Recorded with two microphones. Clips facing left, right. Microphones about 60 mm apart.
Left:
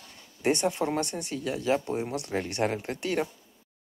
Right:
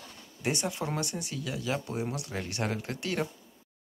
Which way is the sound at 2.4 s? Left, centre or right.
Left.